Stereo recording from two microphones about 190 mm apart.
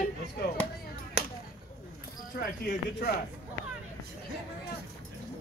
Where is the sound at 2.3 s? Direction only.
55° left (ahead or behind).